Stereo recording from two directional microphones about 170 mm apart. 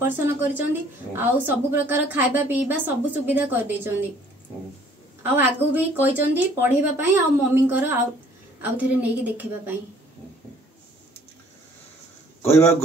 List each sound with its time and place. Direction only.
0.0 s a woman's voice: 10° right (ahead or behind)
5.3 s a woman's voice: 10° right (ahead or behind)
12.4 s a man's voice: 15° left (ahead or behind)